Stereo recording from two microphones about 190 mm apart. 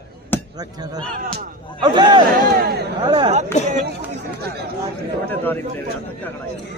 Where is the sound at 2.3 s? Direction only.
55° right (ahead or behind).